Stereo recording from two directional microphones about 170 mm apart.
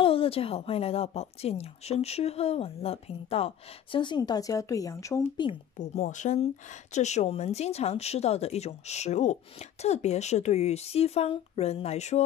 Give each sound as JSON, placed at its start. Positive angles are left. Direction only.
{"t": 0.0, "sound": "speech", "side_deg": 35}
{"t": 5.8, "sound": "speech", "side_deg": 45}